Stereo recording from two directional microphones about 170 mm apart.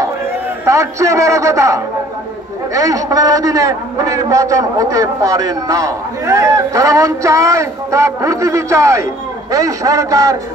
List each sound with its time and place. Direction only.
0.7 s a man's voice: 20° right (ahead or behind)